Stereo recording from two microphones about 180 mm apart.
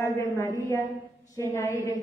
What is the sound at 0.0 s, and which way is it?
A woman's voice, 15° left (ahead or behind).